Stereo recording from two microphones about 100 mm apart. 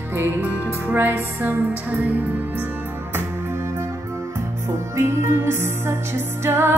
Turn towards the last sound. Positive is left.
turn(degrees=-25)  # may be behind; listen again after turning